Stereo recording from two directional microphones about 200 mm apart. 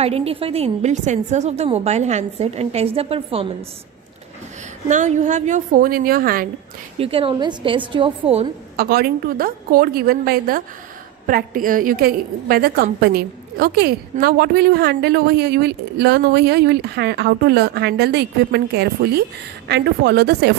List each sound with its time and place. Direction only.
0.0 s a woman's voice: 30° right (ahead or behind)
4.8 s a woman's voice: 35° right (ahead or behind)
7.0 s a woman's voice: 30° right (ahead or behind)
8.7 s a woman's voice: 50° right (ahead or behind)